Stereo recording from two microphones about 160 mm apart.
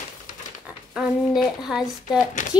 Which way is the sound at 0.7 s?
Centre (ahead or behind).